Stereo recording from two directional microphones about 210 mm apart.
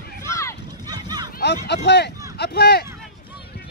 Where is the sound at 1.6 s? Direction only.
55° left (ahead or behind).